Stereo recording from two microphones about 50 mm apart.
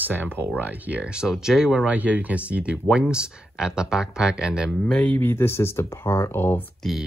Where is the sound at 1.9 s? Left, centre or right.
Right.